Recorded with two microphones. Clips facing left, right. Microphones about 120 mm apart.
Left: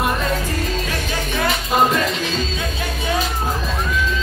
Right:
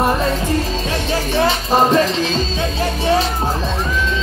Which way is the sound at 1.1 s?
30° right (ahead or behind).